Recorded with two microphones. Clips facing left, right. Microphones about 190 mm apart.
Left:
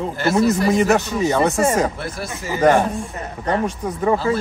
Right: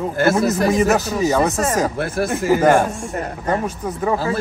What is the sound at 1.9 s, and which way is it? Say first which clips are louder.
Speech: right 8 dB; 55° right (ahead or behind).